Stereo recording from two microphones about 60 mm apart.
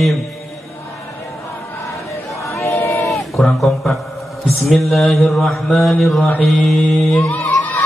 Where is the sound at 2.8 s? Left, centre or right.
Left.